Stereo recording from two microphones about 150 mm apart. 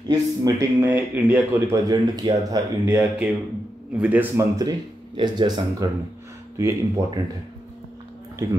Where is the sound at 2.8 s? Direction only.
10° right (ahead or behind).